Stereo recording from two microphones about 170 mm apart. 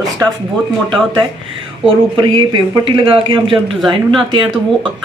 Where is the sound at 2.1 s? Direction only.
30° right (ahead or behind).